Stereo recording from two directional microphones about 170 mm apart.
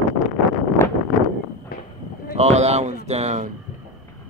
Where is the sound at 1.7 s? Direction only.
60° left (ahead or behind).